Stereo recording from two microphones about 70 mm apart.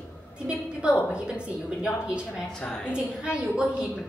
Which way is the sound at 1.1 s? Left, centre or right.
Centre.